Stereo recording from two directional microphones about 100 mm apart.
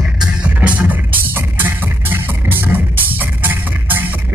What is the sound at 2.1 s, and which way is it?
Music, 20° right (ahead or behind).